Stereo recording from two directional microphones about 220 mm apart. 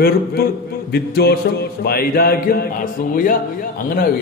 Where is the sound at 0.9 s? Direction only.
45° left (ahead or behind).